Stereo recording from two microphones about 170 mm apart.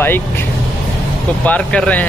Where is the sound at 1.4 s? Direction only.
5° left (ahead or behind).